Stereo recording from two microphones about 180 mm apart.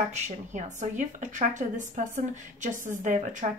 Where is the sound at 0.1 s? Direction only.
40° right (ahead or behind).